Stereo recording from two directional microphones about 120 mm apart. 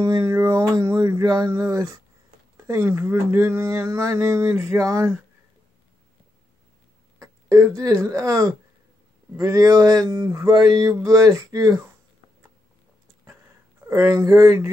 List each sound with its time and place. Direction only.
0.2 s speech: 25° right (ahead or behind)
7.2 s speech: 25° right (ahead or behind)
13.8 s speech: 25° right (ahead or behind)